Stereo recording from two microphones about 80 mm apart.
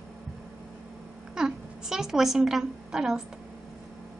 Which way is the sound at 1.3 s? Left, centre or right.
Centre.